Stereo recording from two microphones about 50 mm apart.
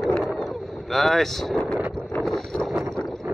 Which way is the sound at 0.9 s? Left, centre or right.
Centre.